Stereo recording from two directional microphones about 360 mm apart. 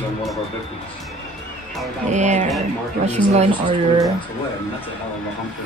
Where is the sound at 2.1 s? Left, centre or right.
Centre.